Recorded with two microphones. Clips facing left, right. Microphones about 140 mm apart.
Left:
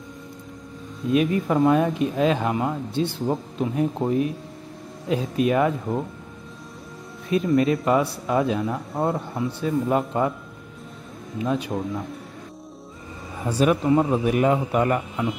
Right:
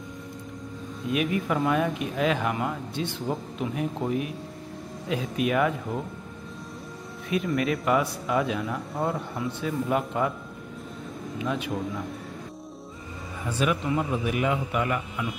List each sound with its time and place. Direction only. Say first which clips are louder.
1.1 s speech: left 6 dB; 35° left (ahead or behind)
7.2 s speech: left 6 dB; 30° left (ahead or behind)
13.4 s speech: left 6 dB; 35° left (ahead or behind)